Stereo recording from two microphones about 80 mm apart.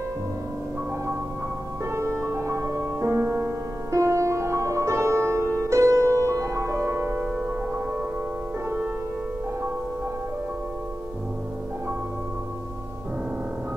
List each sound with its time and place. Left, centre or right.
1.9 s music: right
7.3 s music: right